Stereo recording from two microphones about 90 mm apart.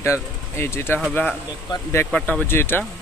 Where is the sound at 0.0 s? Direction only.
30° left (ahead or behind).